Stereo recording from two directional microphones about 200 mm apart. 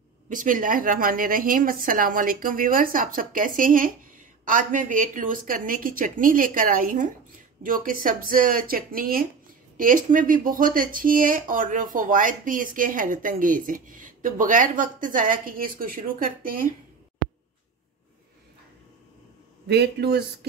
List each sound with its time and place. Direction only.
0.3 s a woman's voice: 40° right (ahead or behind)
19.7 s speech: 55° right (ahead or behind)